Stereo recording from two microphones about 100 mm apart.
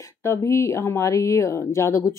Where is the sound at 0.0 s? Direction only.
30° left (ahead or behind).